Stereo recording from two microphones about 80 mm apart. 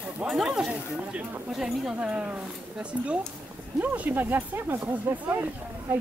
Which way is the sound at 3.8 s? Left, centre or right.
Centre.